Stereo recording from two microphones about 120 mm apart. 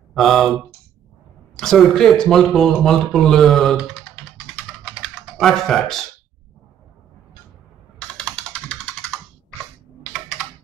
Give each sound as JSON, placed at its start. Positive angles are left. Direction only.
{"t": 0.1, "sound": "speech", "side_deg": 0}
{"t": 1.6, "sound": "speech", "side_deg": 5}
{"t": 3.7, "sound": "typing", "side_deg": -5}
{"t": 5.4, "sound": "speech", "side_deg": 0}
{"t": 8.3, "sound": "computer keyboard", "side_deg": 5}